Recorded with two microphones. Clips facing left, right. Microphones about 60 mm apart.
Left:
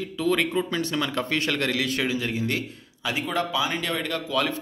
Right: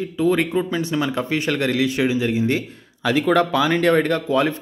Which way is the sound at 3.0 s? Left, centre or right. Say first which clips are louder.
Right 9 dB; right.